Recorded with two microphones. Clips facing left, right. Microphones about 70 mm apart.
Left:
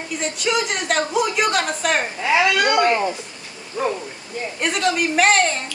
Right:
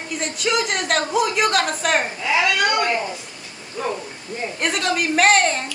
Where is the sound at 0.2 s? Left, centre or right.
Centre.